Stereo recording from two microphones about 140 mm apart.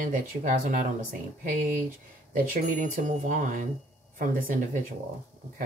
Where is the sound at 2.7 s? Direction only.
65° right (ahead or behind).